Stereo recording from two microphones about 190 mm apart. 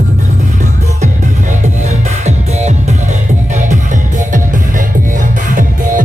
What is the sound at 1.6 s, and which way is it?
Music, 35° right (ahead or behind).